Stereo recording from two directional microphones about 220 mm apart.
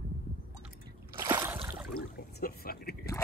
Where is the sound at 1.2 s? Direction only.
10° right (ahead or behind).